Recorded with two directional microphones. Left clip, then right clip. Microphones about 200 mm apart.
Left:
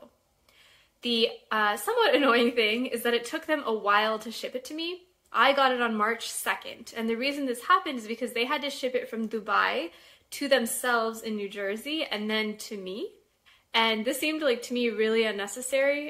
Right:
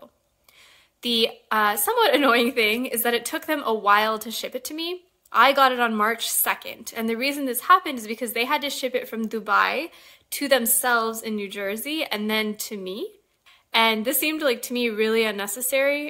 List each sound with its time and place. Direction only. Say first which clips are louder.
1.0 s a woman's voice: right 4 dB; 50° right (ahead or behind)